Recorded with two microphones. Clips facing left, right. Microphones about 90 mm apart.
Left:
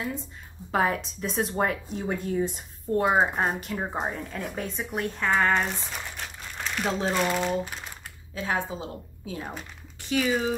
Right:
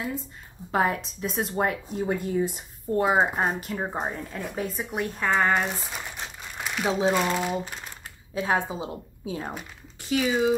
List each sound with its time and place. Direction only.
0.0 s a woman's voice: centre (ahead or behind)
6.2 s crumpling: 10° right (ahead or behind)
7.2 s a woman's voice: 5° right (ahead or behind)
9.5 s a woman's voice: 5° right (ahead or behind)